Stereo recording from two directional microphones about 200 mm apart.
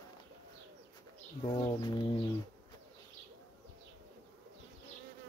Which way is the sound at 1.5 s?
20° left (ahead or behind).